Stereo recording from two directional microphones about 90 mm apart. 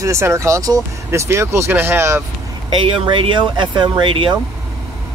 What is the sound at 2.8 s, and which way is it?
Speech, 60° right (ahead or behind).